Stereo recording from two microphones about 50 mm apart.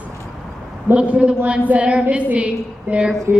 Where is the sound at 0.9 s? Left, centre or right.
Right.